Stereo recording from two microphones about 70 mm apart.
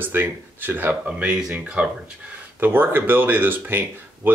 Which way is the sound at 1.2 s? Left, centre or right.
Centre.